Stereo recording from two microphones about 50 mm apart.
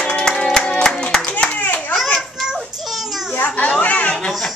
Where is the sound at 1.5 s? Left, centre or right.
Left.